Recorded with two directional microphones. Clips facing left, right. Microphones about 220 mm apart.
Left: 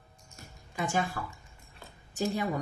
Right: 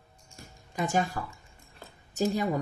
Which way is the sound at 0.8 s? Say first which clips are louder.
Right 3 dB; 40° right (ahead or behind).